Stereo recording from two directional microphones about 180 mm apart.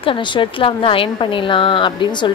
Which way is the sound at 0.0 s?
25° left (ahead or behind).